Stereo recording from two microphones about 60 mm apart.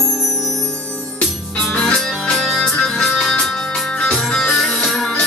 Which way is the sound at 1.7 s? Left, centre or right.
Centre.